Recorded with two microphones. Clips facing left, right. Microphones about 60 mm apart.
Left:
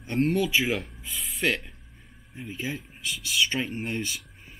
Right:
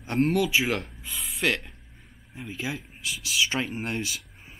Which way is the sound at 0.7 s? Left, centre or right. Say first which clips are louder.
Even; centre.